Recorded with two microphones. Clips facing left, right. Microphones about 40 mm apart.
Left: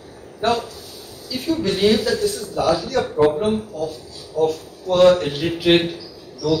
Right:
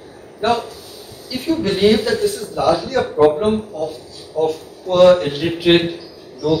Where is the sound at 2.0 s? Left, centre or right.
Right.